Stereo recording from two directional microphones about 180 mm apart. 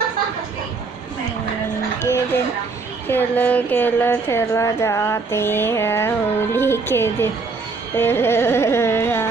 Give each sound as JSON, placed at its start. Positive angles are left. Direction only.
{"t": 2.0, "sound": "speech", "side_deg": 15}